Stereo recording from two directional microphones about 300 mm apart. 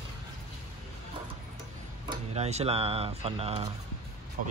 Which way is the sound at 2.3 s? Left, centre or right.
Right.